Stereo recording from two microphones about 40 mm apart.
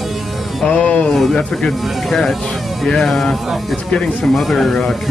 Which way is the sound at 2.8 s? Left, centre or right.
Centre.